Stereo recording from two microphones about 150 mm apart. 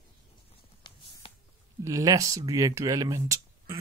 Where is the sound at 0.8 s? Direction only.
30° left (ahead or behind).